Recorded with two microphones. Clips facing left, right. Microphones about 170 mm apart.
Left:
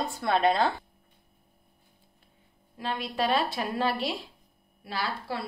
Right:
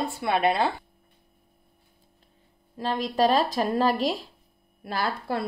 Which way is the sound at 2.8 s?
40° right (ahead or behind).